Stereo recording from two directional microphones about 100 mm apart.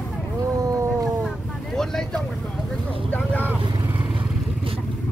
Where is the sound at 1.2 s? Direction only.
5° left (ahead or behind).